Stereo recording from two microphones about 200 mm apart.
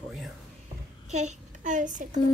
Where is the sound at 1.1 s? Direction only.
35° right (ahead or behind).